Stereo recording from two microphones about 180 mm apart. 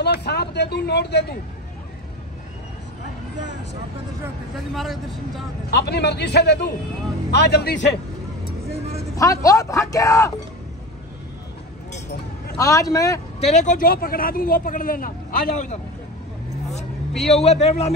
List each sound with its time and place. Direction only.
0.0 s speech: 65° left (ahead or behind)
4.7 s speech: centre (ahead or behind)
5.7 s a man's voice: 65° left (ahead or behind)
9.1 s a man's voice: 20° left (ahead or behind)
12.5 s a man's voice: 20° left (ahead or behind)
13.4 s speech: 40° left (ahead or behind)
17.2 s a man's voice: 35° left (ahead or behind)